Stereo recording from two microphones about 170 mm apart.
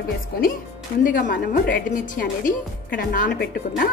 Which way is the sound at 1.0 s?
55° left (ahead or behind).